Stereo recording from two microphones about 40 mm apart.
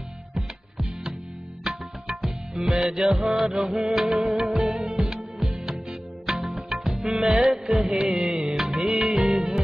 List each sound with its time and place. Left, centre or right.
1.6 s music: centre
3.2 s music: centre
4.8 s music: centre
5.4 s music: centre
7.3 s music: centre
7.7 s music: centre
8.0 s music of bollywood: centre